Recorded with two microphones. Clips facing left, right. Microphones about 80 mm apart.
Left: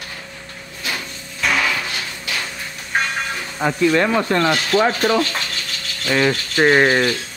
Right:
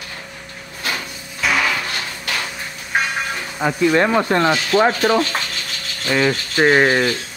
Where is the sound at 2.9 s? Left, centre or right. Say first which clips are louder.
Right 1 dB; centre.